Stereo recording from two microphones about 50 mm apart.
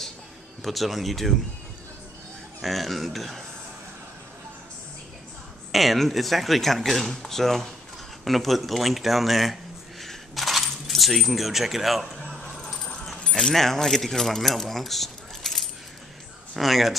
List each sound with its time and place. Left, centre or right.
0.7 s speech: centre
2.6 s speech: centre
5.7 s speech: centre
10.0 s keys jangling: centre
12.5 s keys jangling: centre
13.4 s speech: centre